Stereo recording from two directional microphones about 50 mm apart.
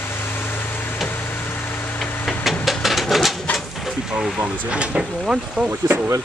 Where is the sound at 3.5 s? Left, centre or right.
Centre.